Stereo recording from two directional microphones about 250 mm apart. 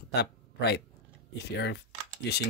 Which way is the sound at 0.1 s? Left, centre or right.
Left.